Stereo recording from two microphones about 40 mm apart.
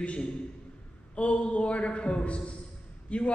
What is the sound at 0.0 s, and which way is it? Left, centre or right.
A woman's voice, left.